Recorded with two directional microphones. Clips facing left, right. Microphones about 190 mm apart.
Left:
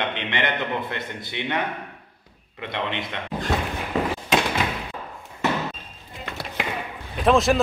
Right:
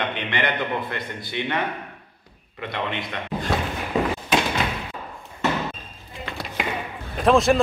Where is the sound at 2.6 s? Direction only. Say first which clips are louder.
Even; 20° left (ahead or behind).